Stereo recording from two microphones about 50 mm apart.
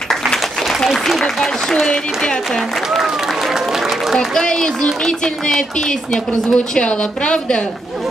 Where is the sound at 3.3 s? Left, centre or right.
Centre.